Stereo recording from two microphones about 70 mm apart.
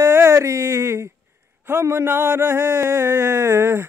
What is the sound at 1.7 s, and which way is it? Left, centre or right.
Mantra, right.